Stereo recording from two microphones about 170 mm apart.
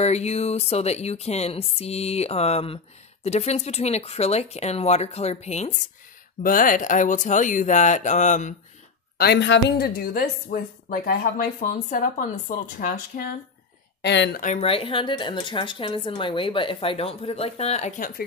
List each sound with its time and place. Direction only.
0.0 s speech: 40° left (ahead or behind)
6.4 s speech: 55° left (ahead or behind)
9.2 s a woman's voice: 85° left; by 13.3 s 50° left (ahead or behind)
14.0 s speech: 90° left
14.4 s speech: 40° left (ahead or behind)